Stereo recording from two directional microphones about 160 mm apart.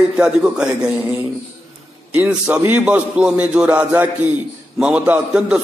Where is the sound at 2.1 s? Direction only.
10° right (ahead or behind).